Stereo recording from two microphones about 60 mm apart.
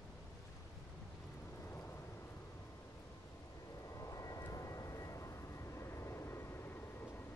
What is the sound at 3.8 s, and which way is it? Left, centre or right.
Vehicle, left.